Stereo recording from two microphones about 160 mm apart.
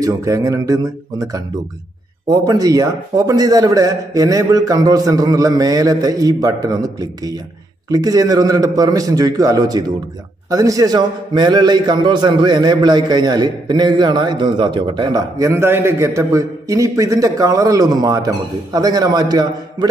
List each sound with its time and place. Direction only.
0.0 s a man's voice: 20° right (ahead or behind)
2.2 s a man's voice: 25° right (ahead or behind)